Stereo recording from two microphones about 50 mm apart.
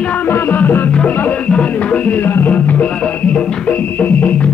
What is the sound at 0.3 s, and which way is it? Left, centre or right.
Music, left.